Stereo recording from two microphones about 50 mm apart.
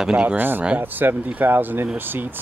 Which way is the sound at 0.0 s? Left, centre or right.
Centre.